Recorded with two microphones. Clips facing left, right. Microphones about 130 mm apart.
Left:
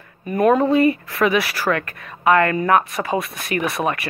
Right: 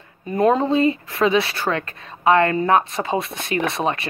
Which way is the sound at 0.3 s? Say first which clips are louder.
Left 2 dB; 25° right (ahead or behind).